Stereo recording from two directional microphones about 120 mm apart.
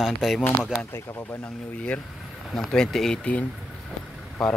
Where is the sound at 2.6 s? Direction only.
5° left (ahead or behind).